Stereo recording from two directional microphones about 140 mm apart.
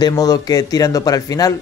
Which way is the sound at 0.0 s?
25° left (ahead or behind).